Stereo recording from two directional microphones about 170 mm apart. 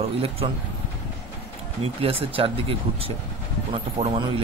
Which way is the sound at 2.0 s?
35° right (ahead or behind).